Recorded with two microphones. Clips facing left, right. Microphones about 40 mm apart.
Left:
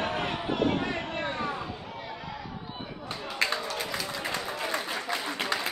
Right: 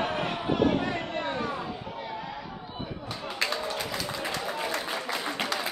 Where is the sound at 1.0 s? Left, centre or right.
Centre.